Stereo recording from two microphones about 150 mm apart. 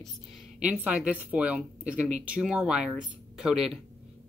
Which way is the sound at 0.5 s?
10° right (ahead or behind).